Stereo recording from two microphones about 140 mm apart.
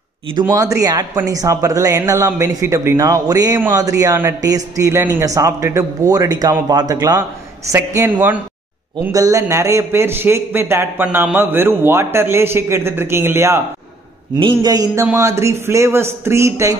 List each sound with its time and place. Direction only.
0.5 s a man's voice: 25° right (ahead or behind)